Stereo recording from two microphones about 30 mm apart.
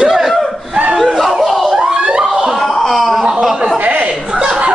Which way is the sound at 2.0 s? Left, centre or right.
Right.